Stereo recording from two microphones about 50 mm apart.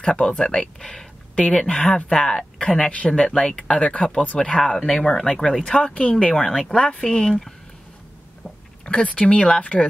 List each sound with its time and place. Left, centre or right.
0.0 s speech: centre
5.9 s speech: left
6.3 s speech: centre
8.8 s speech: centre